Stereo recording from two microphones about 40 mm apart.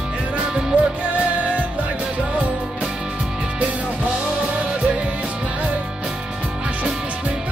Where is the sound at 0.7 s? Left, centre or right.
Right.